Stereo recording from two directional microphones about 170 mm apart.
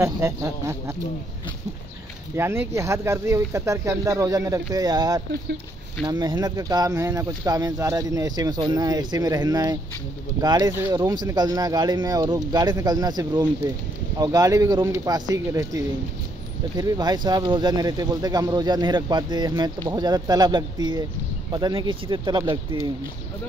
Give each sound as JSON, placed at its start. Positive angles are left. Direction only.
{"t": 0.0, "sound": "speech", "side_deg": -15}
{"t": 2.3, "sound": "speech", "side_deg": -15}